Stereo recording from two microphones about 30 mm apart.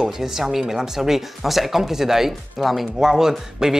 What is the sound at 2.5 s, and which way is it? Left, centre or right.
Speech, centre.